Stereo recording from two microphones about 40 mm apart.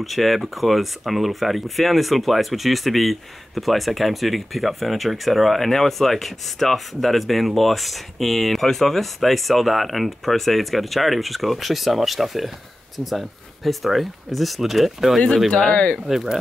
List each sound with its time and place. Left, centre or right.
0.0 s speech: centre
15.1 s speech: centre
15.6 s speech: centre
16.1 s speech: centre